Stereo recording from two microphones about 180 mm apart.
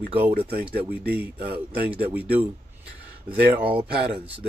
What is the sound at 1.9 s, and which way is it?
Speech, 10° right (ahead or behind).